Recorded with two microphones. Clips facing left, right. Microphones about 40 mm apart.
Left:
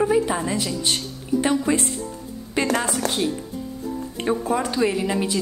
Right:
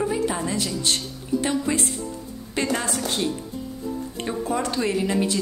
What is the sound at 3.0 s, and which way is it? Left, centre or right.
Speech, left.